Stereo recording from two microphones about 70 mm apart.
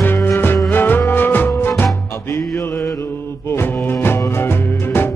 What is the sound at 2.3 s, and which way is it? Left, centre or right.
Mantra, left.